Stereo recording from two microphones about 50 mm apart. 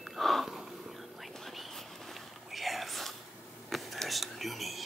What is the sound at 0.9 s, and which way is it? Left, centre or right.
Whispering, centre.